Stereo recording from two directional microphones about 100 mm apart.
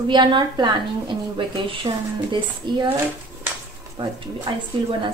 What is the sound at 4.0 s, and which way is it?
Speech, 35° right (ahead or behind).